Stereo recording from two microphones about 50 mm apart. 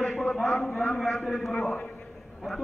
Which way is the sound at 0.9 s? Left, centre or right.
Centre.